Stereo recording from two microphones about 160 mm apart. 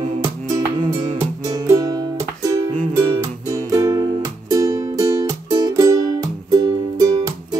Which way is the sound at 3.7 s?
25° right (ahead or behind).